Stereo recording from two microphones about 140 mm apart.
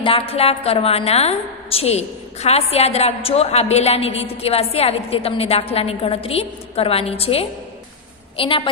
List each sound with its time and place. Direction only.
0.0 s a woman's voice: 40° left (ahead or behind)